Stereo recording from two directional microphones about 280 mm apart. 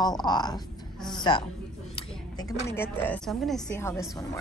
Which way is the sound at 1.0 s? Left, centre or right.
Centre.